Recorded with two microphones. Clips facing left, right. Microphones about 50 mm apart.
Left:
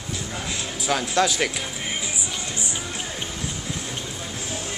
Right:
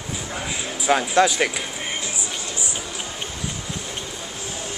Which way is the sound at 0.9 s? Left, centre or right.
Right.